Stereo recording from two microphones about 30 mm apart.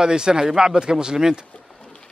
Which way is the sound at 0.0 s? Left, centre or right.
Right.